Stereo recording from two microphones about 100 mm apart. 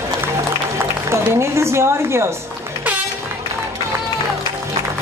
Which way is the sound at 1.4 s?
25° right (ahead or behind).